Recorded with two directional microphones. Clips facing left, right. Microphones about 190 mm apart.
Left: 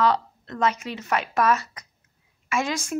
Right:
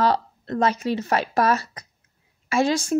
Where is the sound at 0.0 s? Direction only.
35° right (ahead or behind).